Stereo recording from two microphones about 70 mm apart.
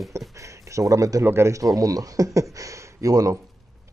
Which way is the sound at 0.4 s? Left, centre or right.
Right.